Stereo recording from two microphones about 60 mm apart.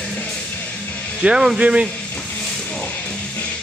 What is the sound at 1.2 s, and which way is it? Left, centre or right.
Speech, centre.